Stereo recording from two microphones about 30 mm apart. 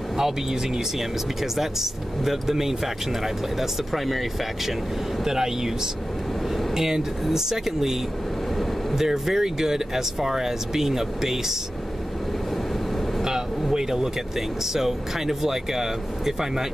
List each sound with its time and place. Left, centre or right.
0.2 s speech: centre
3.5 s speech: centre
5.2 s speech: centre
6.7 s speech: centre
13.7 s speech: centre